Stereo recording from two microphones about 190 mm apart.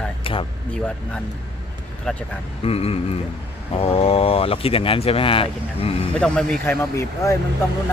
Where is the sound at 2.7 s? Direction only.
30° left (ahead or behind).